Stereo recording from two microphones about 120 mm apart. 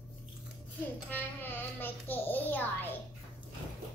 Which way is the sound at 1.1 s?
15° left (ahead or behind).